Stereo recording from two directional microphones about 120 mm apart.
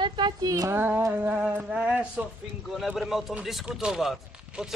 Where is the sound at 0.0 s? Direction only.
40° right (ahead or behind).